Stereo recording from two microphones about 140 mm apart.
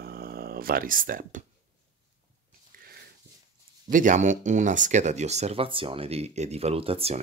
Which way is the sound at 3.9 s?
60° right (ahead or behind).